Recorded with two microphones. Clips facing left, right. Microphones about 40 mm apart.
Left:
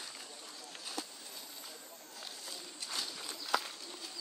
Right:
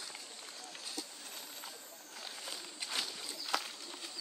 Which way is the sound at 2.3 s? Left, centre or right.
Right.